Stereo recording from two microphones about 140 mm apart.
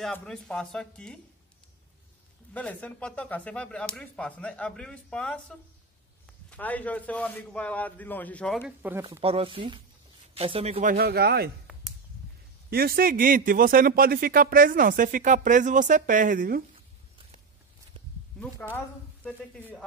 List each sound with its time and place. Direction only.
0.0 s speech: 5° left (ahead or behind)
2.5 s speech: 10° left (ahead or behind)
8.5 s speech: 5° right (ahead or behind)
9.2 s speech: 40° right (ahead or behind)
10.8 s speech: 80° right
12.7 s a man's voice: 90° right
18.4 s a sound: 5° left (ahead or behind)